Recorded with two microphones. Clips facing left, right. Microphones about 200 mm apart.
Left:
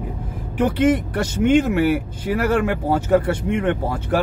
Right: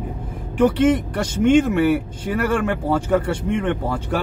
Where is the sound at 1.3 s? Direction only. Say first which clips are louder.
Right 1 dB; 10° left (ahead or behind).